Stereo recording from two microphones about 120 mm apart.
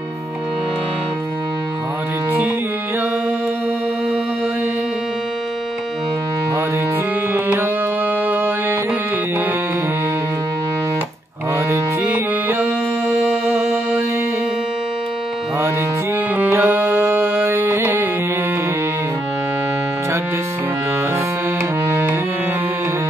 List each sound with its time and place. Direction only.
7.3 s tabla: 15° right (ahead or behind)
8.3 s music: 15° right (ahead or behind)
13.1 s music: centre (ahead or behind)
16.3 s music: 15° right (ahead or behind)
21.8 s tabla: 20° right (ahead or behind)